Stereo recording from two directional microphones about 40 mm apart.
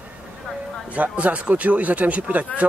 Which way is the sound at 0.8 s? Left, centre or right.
Right.